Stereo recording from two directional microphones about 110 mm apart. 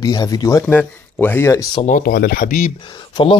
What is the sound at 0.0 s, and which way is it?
Speech, 35° left (ahead or behind).